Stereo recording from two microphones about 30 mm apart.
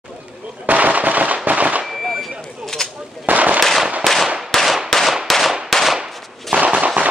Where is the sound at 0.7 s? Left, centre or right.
Right.